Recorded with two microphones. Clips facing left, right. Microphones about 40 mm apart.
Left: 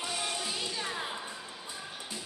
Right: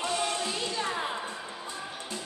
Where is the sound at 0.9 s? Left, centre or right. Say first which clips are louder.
Right 5 dB; centre.